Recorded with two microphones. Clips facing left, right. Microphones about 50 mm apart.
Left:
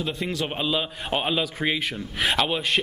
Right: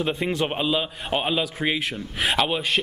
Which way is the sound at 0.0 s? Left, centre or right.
Right.